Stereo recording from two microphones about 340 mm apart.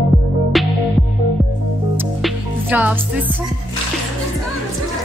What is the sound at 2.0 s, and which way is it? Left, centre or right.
Music, centre.